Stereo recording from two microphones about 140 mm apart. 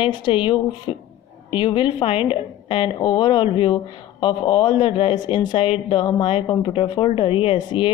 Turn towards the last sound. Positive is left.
turn(degrees=40)  # may be behind; listen again after turning